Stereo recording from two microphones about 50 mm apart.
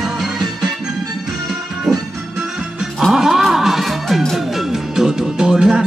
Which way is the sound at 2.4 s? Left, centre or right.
Centre.